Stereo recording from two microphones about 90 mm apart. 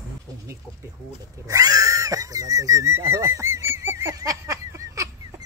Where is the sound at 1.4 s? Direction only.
40° right (ahead or behind).